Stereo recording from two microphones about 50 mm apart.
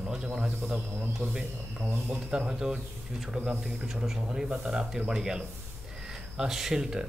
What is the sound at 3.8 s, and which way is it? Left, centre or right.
Speech, centre.